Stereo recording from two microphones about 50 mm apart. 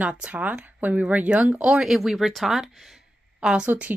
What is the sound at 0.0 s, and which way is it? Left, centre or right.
Speech, right.